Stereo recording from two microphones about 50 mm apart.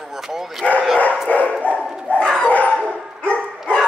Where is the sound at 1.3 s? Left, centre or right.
Left.